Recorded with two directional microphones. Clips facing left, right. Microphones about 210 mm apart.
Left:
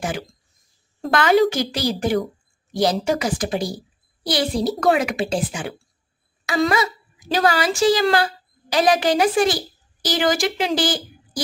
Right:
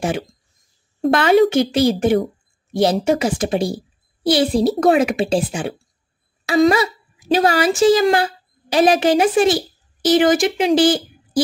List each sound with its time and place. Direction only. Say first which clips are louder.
1.1 s a child's voice: right 3 dB; 25° right (ahead or behind)